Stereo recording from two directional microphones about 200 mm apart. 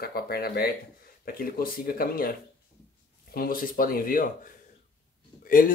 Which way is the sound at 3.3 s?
45° left (ahead or behind).